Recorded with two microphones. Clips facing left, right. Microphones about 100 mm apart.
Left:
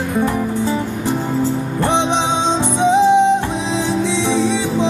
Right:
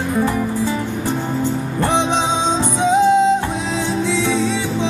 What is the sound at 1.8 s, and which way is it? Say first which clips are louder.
Music: even; 20° left (ahead or behind).